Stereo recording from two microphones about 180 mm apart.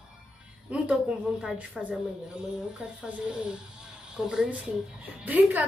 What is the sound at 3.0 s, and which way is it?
A woman's voice, 5° right (ahead or behind).